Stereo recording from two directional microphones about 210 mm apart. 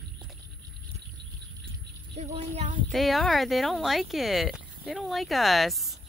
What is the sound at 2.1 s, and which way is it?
Speech, 30° right (ahead or behind).